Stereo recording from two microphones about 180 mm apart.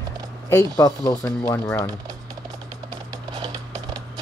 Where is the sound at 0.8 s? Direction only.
15° left (ahead or behind).